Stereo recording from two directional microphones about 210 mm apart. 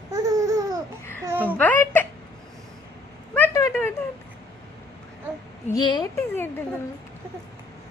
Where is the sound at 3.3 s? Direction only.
10° left (ahead or behind).